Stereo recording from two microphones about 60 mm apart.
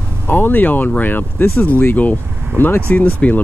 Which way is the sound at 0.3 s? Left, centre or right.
Left.